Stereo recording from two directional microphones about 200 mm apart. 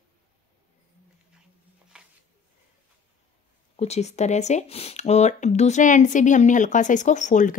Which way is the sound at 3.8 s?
35° left (ahead or behind).